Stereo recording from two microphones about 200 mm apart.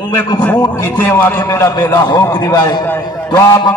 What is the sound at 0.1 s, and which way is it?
A man's voice, 10° left (ahead or behind).